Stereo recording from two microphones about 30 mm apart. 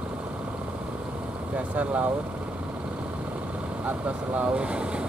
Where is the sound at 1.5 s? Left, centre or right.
Right.